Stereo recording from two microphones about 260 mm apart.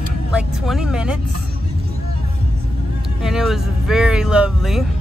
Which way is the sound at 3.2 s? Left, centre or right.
Centre.